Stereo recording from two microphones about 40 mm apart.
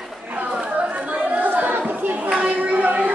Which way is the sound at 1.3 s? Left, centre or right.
Right.